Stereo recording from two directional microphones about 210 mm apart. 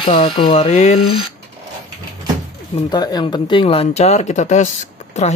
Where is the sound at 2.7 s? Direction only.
20° left (ahead or behind).